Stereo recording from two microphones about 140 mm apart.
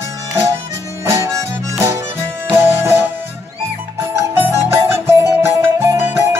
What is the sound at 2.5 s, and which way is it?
Music, 15° right (ahead or behind).